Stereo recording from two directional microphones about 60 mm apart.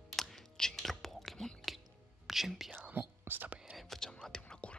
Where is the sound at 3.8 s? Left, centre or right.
Centre.